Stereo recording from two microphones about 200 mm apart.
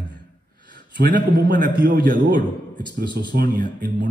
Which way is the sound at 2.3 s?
20° left (ahead or behind).